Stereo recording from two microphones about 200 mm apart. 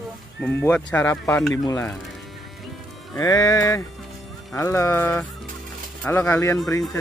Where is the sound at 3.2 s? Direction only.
20° left (ahead or behind).